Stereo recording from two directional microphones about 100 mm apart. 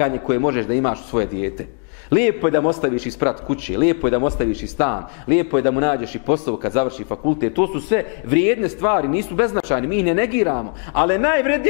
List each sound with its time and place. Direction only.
0.0 s a man's voice: 15° left (ahead or behind)